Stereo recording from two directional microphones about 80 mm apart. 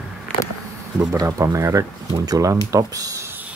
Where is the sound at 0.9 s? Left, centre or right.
Right.